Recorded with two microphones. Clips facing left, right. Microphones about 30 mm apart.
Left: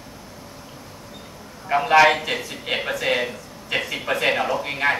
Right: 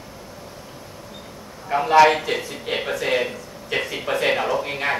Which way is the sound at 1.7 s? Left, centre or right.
Left.